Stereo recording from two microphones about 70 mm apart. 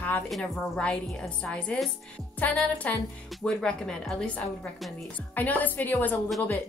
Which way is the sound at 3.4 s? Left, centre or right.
Centre.